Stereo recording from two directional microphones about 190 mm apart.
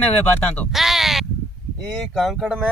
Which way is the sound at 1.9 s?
Centre (ahead or behind).